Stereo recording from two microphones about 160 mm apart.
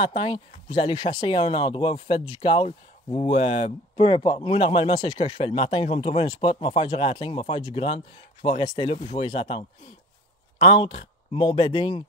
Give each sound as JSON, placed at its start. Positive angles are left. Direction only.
{"t": 0.0, "sound": "speech", "side_deg": 35}